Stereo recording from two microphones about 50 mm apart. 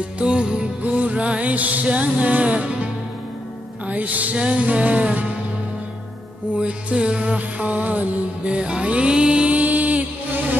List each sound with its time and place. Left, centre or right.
0.2 s music: centre
6.6 s music: right